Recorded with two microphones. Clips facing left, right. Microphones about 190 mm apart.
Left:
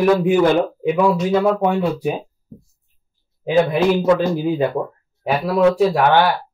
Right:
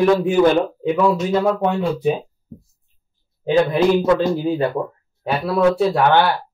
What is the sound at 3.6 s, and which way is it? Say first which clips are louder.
Speech: even; 15° left (ahead or behind).